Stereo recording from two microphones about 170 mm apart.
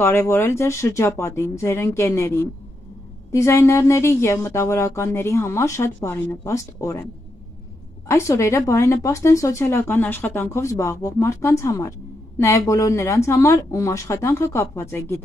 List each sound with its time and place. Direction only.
0.0 s speech: 15° left (ahead or behind)
8.1 s speech: 15° left (ahead or behind)